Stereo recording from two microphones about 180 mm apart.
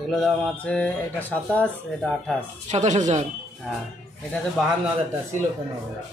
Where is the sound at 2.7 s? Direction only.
40° right (ahead or behind).